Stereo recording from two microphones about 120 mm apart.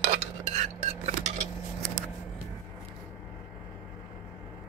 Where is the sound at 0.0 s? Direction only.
70° right (ahead or behind).